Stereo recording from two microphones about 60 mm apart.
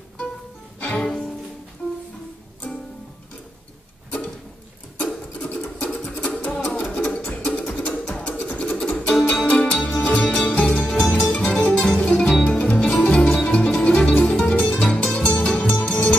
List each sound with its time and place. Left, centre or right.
0.7 s music: centre
1.0 s music: centre
5.3 s music: left
11.0 s music: centre
11.3 s music: left